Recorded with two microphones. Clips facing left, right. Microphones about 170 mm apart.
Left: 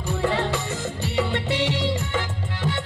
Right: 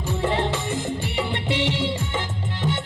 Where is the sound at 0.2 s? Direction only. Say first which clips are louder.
Even; 20° right (ahead or behind).